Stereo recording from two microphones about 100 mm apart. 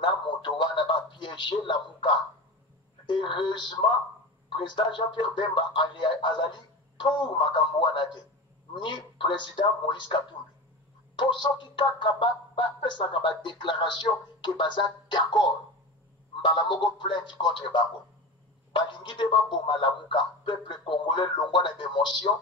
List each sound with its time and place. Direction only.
0.0 s a woman's voice: 55° left (ahead or behind)